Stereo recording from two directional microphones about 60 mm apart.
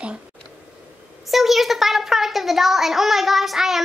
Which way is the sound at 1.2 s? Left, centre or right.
Centre.